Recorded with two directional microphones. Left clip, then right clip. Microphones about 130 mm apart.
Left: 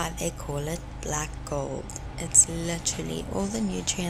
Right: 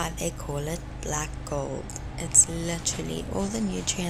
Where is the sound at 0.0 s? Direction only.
Centre (ahead or behind).